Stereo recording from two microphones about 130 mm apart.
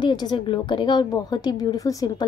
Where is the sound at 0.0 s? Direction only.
35° left (ahead or behind).